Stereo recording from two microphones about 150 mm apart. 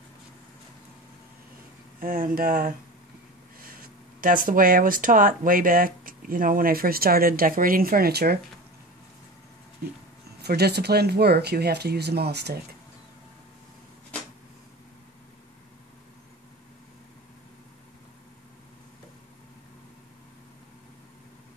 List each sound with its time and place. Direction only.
2.0 s speech: 70° right (ahead or behind); by 8.4 s 90° right
10.4 s speech: 90° right